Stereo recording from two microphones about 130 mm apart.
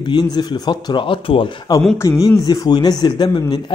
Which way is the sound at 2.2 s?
30° left (ahead or behind).